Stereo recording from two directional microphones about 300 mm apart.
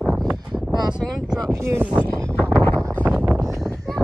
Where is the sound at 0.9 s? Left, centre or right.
Centre.